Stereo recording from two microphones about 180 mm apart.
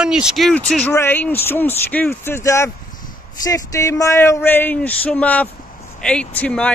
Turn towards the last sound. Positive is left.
turn(degrees=10)  # may be behind; listen again after turning